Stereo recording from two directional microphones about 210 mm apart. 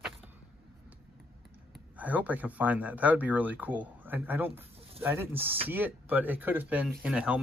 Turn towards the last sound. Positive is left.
turn(degrees=-5)  # may be behind; listen again after turning